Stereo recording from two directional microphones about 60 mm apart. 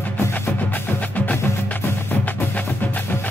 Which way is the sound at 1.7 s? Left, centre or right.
Left.